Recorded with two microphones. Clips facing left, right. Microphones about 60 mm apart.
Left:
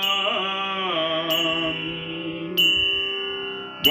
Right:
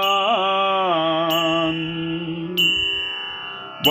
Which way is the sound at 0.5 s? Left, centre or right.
Right.